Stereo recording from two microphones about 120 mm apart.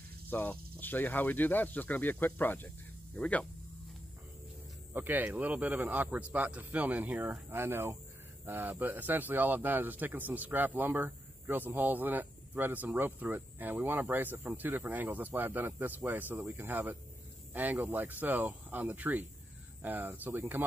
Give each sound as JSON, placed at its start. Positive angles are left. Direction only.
{"t": 0.3, "sound": "speech", "side_deg": 15}
{"t": 4.9, "sound": "speech", "side_deg": -15}